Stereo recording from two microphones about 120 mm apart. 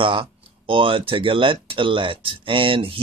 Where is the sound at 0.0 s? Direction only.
45° right (ahead or behind).